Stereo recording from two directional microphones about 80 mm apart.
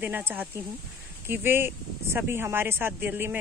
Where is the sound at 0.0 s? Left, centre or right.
Right.